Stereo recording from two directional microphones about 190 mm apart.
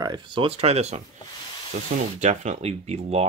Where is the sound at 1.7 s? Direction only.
45° right (ahead or behind).